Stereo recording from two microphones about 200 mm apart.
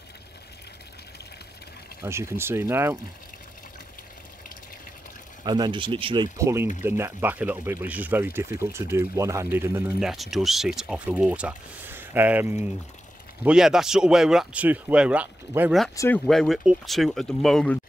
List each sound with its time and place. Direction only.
2.0 s speech: 15° right (ahead or behind)
5.4 s speech: 20° right (ahead or behind)
9.9 s speech: centre (ahead or behind)